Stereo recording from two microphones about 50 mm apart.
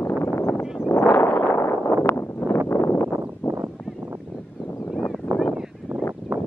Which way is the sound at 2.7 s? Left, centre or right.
Left.